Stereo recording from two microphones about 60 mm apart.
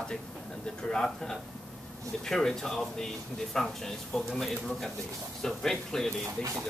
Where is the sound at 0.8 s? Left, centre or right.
Centre.